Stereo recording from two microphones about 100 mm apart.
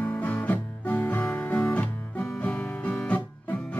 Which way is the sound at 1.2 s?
5° left (ahead or behind).